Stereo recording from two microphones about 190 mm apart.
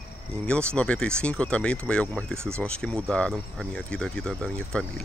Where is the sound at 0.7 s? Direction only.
5° left (ahead or behind).